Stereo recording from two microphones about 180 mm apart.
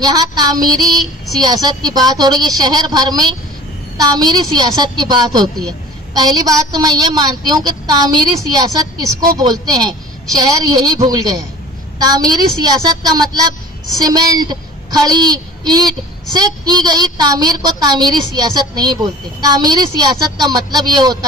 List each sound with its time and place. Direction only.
0.0 s a woman's voice: 20° right (ahead or behind)